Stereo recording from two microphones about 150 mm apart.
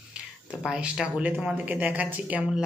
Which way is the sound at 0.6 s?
5° right (ahead or behind).